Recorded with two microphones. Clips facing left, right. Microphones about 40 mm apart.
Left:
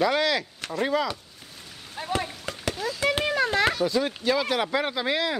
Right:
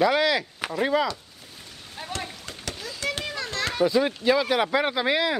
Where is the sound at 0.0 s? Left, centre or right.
Centre.